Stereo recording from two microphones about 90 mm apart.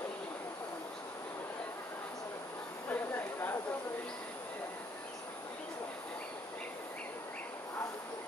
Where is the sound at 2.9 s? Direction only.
25° left (ahead or behind).